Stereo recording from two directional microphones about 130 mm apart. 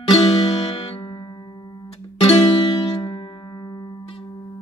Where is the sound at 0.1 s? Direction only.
35° left (ahead or behind).